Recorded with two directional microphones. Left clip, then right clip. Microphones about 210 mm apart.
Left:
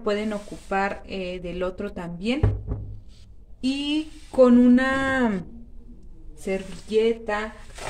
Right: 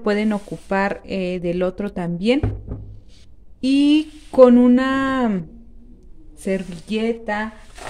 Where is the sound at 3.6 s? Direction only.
50° right (ahead or behind).